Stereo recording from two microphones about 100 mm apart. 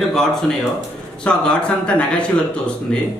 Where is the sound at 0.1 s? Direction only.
5° left (ahead or behind).